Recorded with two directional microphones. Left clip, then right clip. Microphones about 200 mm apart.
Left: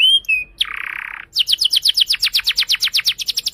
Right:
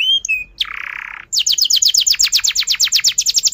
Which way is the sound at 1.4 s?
5° left (ahead or behind).